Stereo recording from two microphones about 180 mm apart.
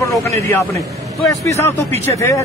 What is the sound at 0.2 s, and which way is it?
A man's voice, 15° left (ahead or behind).